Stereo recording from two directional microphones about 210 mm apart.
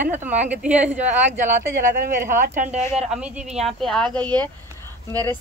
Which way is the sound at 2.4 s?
35° right (ahead or behind).